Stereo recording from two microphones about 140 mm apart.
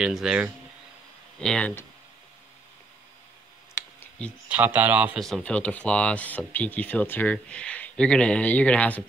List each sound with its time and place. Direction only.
0.0 s speech: 5° right (ahead or behind)
3.7 s computer keyboard: 15° left (ahead or behind)
4.5 s speech: 15° right (ahead or behind)
5.2 s speech: 5° left (ahead or behind)